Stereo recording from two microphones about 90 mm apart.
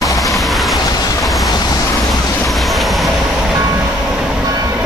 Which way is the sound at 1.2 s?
Centre (ahead or behind).